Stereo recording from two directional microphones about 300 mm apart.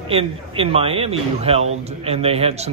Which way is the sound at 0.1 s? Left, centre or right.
Centre.